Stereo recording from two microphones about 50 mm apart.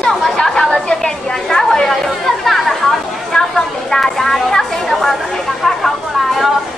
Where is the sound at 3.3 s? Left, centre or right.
Centre.